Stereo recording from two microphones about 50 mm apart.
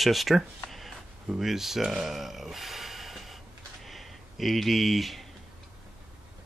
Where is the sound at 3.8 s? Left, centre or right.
Centre.